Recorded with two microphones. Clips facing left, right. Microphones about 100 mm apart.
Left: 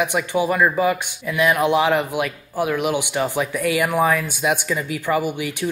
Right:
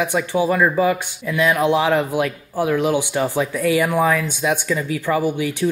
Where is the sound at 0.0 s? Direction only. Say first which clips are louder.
Right 1 dB; 15° left (ahead or behind).